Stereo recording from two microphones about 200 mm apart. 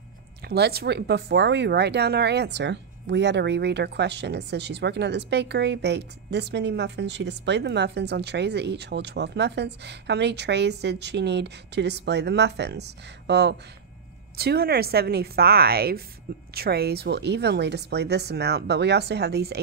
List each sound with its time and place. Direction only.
0.5 s speech: 50° right (ahead or behind)